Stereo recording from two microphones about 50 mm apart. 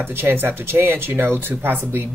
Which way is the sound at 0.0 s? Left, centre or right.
Right.